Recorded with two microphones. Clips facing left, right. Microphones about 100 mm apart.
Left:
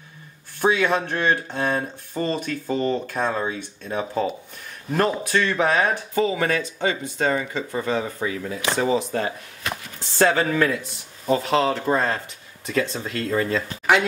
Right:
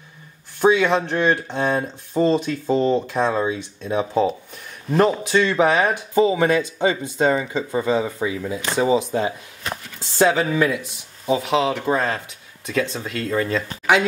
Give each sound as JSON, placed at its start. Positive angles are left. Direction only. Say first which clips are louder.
{"t": 0.6, "sound": "speech", "louder": "right 4 dB", "side_deg": -15}
{"t": 3.3, "sound": "speech", "louder": "right 4 dB", "side_deg": -5}